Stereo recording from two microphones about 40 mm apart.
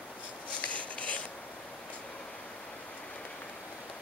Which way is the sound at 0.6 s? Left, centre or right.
Left.